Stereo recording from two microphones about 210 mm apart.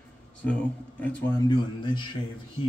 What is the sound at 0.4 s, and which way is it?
Speech, 5° left (ahead or behind).